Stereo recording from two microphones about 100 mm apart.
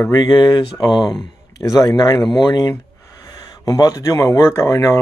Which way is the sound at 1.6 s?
40° left (ahead or behind).